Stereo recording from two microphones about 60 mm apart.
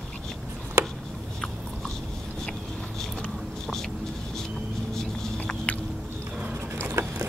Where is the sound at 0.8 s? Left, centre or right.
Right.